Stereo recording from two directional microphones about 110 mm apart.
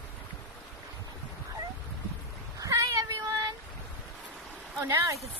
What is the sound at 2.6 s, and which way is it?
Cat, 35° right (ahead or behind).